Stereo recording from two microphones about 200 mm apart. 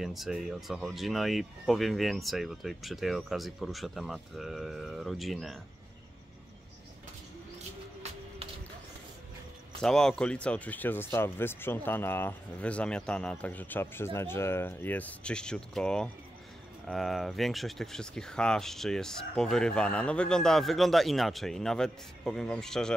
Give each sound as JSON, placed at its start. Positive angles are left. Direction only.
{"t": 0.0, "sound": "speech", "side_deg": 0}
{"t": 9.8, "sound": "speech", "side_deg": 0}